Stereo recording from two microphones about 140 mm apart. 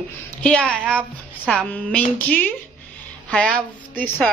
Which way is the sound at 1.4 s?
10° right (ahead or behind).